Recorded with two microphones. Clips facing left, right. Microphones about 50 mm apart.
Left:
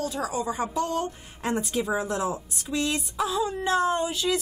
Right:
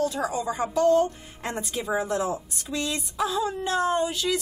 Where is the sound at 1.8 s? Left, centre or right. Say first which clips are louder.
Right 3 dB; centre.